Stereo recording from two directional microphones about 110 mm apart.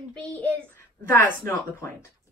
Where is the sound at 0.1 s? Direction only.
10° left (ahead or behind).